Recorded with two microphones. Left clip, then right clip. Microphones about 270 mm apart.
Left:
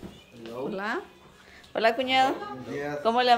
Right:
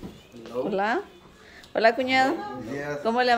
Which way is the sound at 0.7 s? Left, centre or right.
Centre.